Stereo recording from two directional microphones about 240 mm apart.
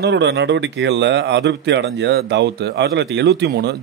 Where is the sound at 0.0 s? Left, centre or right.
Right.